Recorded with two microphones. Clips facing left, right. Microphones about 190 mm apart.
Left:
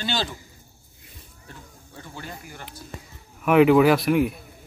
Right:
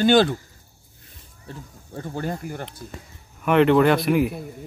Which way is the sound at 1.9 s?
45° right (ahead or behind).